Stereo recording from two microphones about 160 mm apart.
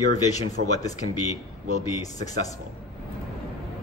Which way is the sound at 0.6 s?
70° right (ahead or behind).